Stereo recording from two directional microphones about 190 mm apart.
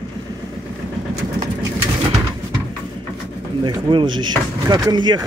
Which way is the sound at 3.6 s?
25° right (ahead or behind).